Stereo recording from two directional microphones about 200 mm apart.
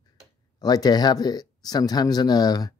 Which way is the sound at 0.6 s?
20° left (ahead or behind).